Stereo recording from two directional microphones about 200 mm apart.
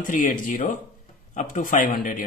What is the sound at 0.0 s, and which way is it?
Speech, 40° left (ahead or behind).